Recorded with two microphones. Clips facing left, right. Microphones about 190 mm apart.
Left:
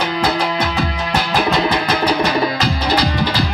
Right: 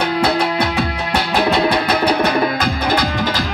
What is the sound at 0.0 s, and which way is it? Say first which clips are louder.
Music: right 2 dB; 65° right (ahead or behind).